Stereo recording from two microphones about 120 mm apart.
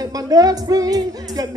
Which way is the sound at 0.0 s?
30° right (ahead or behind).